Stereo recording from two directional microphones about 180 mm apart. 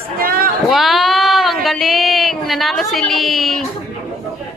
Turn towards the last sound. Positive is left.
turn(degrees=0)  # may be behind; listen again after turning